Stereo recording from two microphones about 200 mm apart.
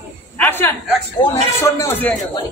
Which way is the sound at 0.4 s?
10° left (ahead or behind).